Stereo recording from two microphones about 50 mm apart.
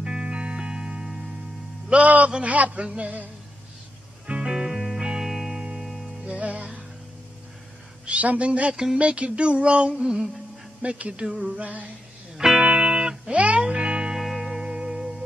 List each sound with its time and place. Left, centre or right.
0.0 s music: right
1.9 s a man's voice: right
2.3 s a sound: right
4.3 s music: centre
5.9 s music: centre
6.2 s music: right
8.0 s a sound: right
10.8 s a sound: right
12.5 s music: centre
14.1 s music: centre